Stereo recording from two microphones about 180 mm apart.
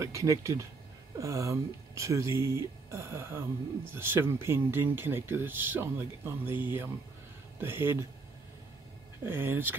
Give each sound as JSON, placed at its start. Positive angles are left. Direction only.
{"t": 0.0, "sound": "speech", "side_deg": -15}
{"t": 9.2, "sound": "speech", "side_deg": -10}